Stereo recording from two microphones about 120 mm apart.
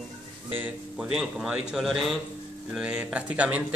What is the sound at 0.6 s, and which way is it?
Speech, 15° right (ahead or behind).